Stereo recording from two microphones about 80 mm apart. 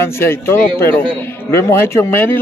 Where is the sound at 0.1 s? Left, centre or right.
Left.